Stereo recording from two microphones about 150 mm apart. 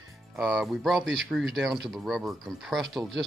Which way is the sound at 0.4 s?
Centre (ahead or behind).